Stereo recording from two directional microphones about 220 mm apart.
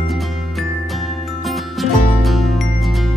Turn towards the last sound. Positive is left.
turn(degrees=0)  # may be behind; listen again after turning